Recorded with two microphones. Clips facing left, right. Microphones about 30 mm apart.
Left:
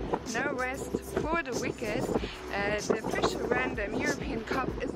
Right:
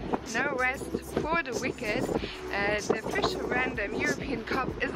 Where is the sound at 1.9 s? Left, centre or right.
Centre.